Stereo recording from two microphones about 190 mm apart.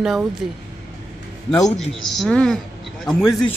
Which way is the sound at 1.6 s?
Centre (ahead or behind).